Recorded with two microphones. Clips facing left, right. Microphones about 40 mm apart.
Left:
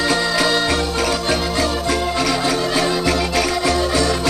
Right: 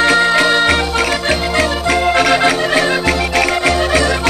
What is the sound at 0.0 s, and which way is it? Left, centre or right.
Music, right.